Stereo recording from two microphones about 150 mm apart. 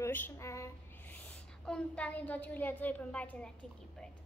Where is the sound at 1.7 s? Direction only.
10° left (ahead or behind).